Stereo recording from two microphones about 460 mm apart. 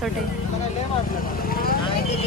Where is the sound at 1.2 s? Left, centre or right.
Centre.